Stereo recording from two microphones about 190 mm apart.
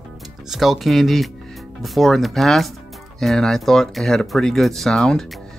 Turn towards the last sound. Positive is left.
turn(degrees=5)  # may be behind; listen again after turning